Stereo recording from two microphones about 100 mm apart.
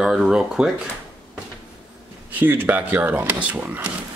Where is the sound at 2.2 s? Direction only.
20° right (ahead or behind).